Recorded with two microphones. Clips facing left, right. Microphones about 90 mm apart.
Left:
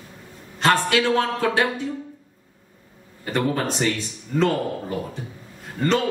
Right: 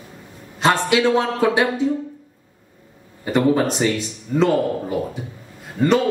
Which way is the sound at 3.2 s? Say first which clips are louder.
Right 6 dB; 15° right (ahead or behind).